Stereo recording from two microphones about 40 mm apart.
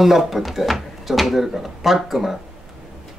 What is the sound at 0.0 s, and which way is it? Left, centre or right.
Speech, centre.